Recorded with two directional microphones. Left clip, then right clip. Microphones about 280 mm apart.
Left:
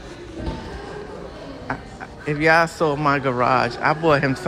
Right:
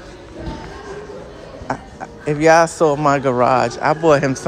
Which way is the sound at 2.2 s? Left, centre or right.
Centre.